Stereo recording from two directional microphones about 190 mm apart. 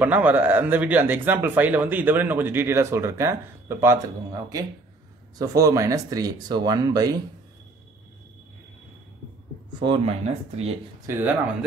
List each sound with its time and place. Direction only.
0.0 s speech: 10° right (ahead or behind)
9.8 s speech: 25° right (ahead or behind)
11.1 s speech: 10° right (ahead or behind)